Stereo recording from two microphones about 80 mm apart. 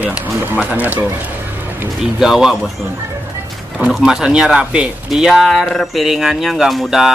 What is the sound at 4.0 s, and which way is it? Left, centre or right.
Speech, centre.